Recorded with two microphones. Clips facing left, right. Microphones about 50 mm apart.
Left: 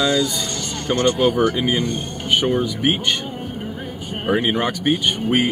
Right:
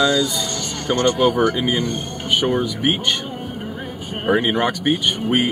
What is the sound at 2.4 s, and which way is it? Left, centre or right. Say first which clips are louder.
Speech: right 1 dB; centre.